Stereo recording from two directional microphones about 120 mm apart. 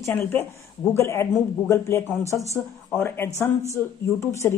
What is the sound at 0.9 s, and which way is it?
Speech, 20° left (ahead or behind).